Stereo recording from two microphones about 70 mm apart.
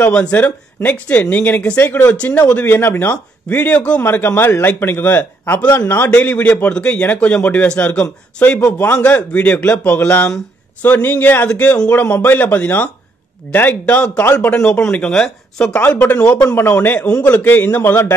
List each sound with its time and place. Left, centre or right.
0.0 s a man's voice: left
1.8 s a man's voice: left
2.0 s a man's voice: left
2.7 s a man's voice: left
4.0 s a man's voice: left; by 15.8 s centre
15.8 s a man's voice: left